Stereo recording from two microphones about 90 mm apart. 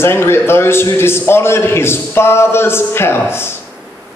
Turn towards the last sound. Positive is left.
turn(degrees=25)  # may be behind; listen again after turning